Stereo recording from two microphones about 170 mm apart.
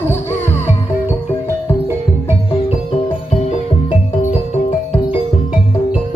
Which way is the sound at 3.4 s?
40° left (ahead or behind).